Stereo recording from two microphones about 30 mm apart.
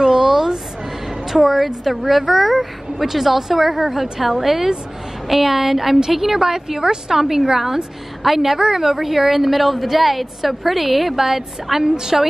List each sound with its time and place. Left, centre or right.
0.1 s a sound: centre
1.0 s a woman's voice: centre
8.5 s a woman's voice: right
8.8 s a woman's voice: centre